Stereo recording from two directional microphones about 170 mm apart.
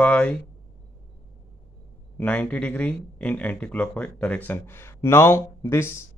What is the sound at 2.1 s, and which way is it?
Speech, 10° left (ahead or behind).